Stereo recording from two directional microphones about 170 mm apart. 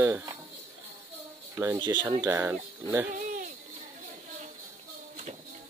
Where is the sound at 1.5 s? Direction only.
20° right (ahead or behind).